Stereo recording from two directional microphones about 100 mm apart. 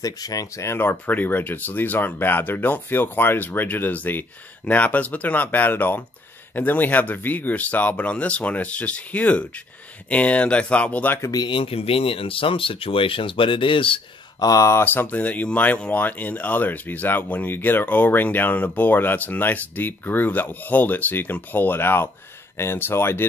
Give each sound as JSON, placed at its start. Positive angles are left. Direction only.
{"t": 0.0, "sound": "speech", "side_deg": 40}
{"t": 11.3, "sound": "speech", "side_deg": 55}
{"t": 14.4, "sound": "speech", "side_deg": 35}